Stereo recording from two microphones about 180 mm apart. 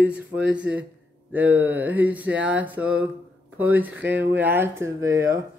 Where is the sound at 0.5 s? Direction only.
5° right (ahead or behind).